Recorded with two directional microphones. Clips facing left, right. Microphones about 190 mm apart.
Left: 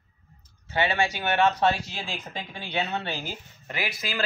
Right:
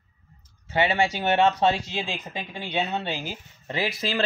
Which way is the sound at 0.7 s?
20° right (ahead or behind).